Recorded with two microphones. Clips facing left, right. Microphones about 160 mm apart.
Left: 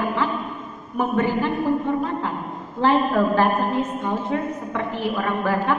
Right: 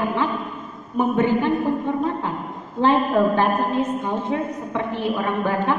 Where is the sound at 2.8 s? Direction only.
20° right (ahead or behind).